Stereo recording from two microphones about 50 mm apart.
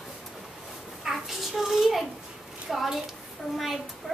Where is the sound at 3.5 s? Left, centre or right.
Centre.